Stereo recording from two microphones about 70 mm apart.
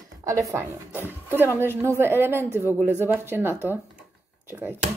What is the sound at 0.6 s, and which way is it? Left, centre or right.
A woman's voice, right.